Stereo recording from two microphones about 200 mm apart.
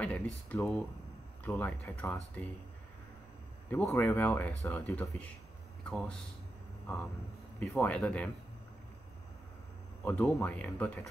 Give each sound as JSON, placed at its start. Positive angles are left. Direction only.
{"t": 0.0, "sound": "speech", "side_deg": 5}
{"t": 3.7, "sound": "speech", "side_deg": 10}
{"t": 7.5, "sound": "speech", "side_deg": 10}
{"t": 10.0, "sound": "speech", "side_deg": 10}